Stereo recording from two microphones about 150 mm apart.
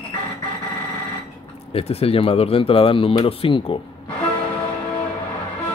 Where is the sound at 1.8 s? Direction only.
40° left (ahead or behind).